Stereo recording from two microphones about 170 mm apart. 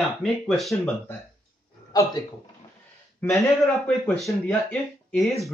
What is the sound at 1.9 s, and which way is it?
Speech, 20° left (ahead or behind).